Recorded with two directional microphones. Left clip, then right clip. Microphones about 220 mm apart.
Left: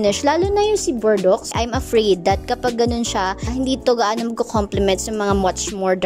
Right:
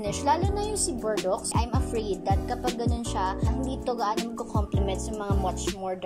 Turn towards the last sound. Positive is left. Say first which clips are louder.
# left 11 dB
turn(degrees=45)  # may be behind; listen again after turning